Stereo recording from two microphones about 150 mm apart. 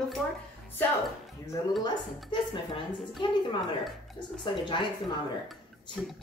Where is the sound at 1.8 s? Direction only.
30° left (ahead or behind).